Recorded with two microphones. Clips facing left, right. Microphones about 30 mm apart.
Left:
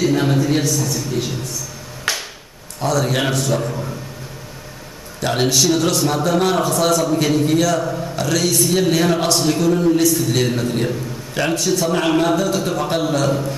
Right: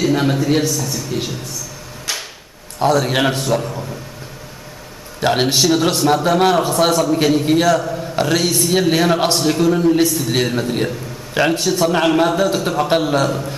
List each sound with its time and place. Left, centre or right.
0.0 s a man's voice: centre
2.1 s a sound: centre
2.8 s speech: right
3.5 s a man's voice: centre
5.2 s a man's voice: right
6.2 s speech: right
7.8 s a man's voice: centre
8.2 s a man's voice: right